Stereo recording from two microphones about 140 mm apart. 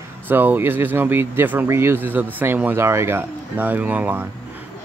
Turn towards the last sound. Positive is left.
turn(degrees=-15)  # may be behind; listen again after turning